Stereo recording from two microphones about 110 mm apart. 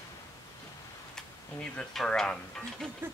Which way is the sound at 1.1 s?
5° left (ahead or behind).